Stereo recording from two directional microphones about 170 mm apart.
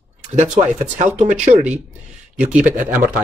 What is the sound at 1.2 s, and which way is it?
Speech, 45° right (ahead or behind).